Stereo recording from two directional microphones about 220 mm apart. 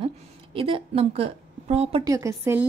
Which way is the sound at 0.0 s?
25° right (ahead or behind).